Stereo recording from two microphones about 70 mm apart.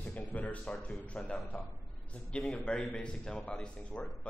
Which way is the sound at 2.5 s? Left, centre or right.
Centre.